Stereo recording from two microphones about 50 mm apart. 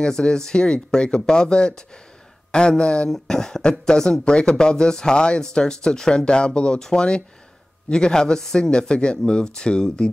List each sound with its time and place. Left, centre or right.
0.0 s speech: centre
2.8 s speech: centre